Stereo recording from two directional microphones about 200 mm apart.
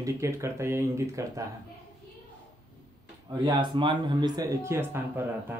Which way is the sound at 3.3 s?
25° right (ahead or behind).